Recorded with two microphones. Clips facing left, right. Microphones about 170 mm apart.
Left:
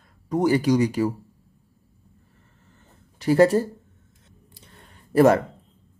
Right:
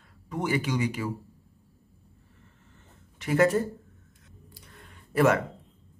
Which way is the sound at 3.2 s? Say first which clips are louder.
Left 6 dB; 35° left (ahead or behind).